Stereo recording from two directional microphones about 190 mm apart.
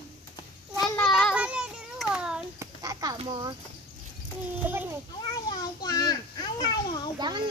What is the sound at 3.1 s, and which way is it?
Speech, 25° right (ahead or behind).